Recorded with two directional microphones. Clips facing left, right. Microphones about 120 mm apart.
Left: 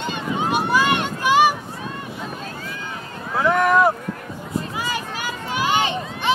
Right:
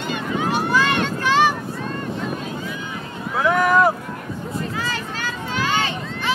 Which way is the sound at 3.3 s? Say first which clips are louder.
Even; centre (ahead or behind).